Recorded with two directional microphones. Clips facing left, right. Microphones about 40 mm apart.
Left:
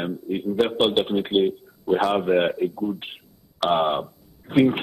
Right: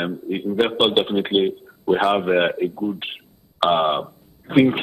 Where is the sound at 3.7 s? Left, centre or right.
Right.